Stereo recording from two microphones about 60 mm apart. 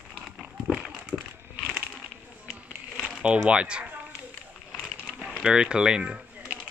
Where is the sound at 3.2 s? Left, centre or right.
Centre.